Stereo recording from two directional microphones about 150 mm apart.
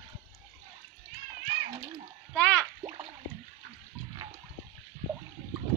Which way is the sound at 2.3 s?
10° left (ahead or behind).